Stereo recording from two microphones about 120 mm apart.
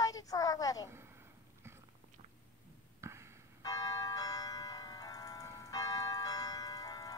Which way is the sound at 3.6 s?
30° left (ahead or behind).